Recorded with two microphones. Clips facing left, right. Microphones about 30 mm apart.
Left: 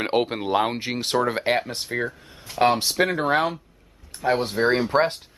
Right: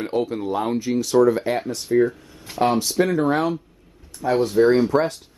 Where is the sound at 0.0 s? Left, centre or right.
Left.